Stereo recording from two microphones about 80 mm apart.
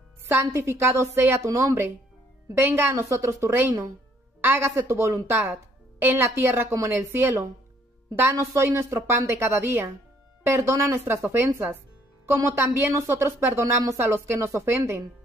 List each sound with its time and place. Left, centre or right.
0.3 s a woman's voice: right